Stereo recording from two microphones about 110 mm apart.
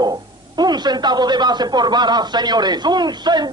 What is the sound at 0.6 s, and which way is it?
A man's voice, 40° right (ahead or behind).